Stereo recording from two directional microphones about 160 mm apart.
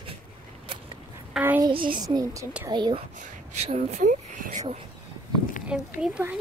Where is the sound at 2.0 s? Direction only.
20° right (ahead or behind).